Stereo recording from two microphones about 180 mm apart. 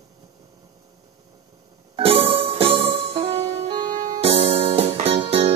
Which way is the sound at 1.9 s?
30° right (ahead or behind).